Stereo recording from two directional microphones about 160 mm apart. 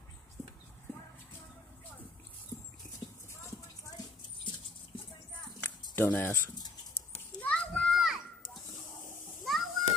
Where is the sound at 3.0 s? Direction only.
30° left (ahead or behind).